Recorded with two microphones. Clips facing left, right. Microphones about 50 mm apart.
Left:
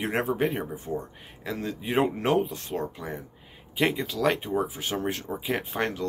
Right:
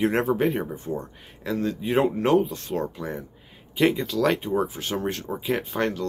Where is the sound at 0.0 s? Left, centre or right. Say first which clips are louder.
Right 4 dB; centre.